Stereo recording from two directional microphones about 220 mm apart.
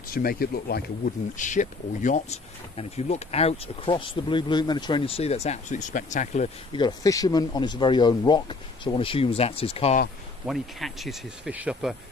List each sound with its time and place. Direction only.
0.1 s speech: 40° left (ahead or behind)
6.8 s speech: 15° left (ahead or behind)
10.4 s speech: centre (ahead or behind)